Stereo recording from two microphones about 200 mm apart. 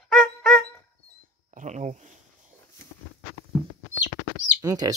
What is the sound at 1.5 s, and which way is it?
Speech, 35° right (ahead or behind).